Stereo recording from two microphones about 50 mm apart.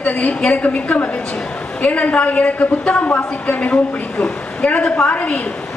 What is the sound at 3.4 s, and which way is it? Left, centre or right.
A woman's voice, left.